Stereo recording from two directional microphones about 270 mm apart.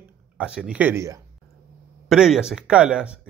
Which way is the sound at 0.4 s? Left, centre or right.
Centre.